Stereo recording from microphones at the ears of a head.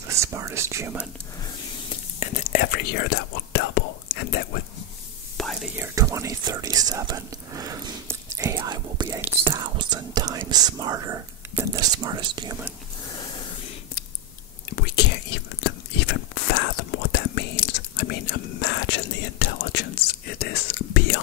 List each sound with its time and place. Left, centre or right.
0.0 s speech: right
1.9 s speech: left
5.9 s speech: right
13.1 s a sound: left
14.7 s whispering: left